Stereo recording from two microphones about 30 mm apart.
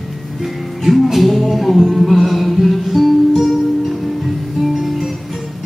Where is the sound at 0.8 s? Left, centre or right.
Centre.